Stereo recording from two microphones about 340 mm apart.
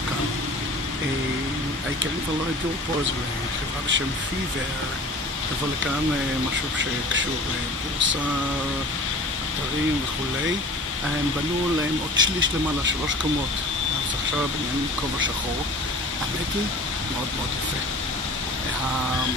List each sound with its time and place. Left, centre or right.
12.2 s speech: right